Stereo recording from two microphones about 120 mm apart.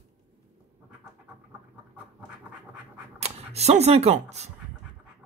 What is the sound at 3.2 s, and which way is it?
Speech, 65° right (ahead or behind).